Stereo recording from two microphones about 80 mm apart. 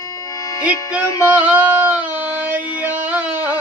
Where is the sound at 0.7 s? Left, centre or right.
Centre.